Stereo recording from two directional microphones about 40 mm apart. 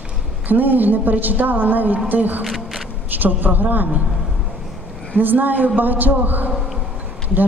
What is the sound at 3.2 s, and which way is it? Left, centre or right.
Speech, right.